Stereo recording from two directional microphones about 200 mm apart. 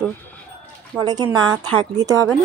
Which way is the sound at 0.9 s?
20° right (ahead or behind).